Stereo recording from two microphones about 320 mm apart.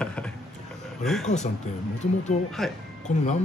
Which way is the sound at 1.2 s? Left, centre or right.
Left.